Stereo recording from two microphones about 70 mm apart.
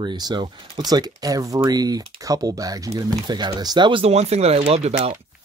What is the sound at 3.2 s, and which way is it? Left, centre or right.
Speech, right.